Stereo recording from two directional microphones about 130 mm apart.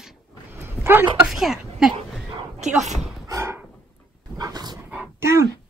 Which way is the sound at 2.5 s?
60° right (ahead or behind).